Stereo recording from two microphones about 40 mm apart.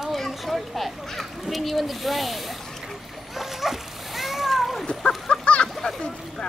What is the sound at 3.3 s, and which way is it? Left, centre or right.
Splash, centre.